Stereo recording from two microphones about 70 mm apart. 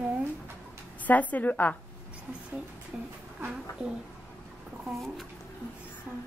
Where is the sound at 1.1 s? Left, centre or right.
Left.